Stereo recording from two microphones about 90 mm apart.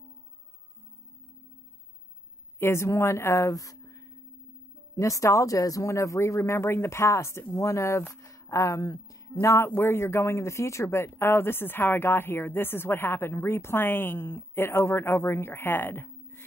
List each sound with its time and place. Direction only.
2.6 s speech: 30° left (ahead or behind)
3.5 s a sound: 40° left (ahead or behind)
4.9 s speech: 35° left (ahead or behind)